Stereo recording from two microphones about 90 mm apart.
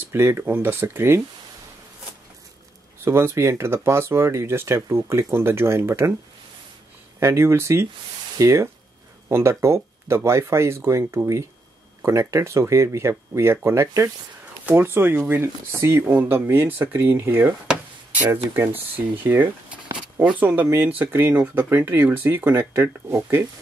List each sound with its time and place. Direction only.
0.0 s speech: 25° right (ahead or behind)
3.1 s speech: 30° right (ahead or behind)
7.2 s speech: 30° right (ahead or behind)
18.9 s speech: 20° right (ahead or behind)